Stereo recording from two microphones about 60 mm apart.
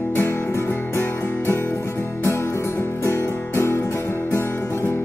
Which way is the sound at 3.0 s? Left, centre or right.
Left.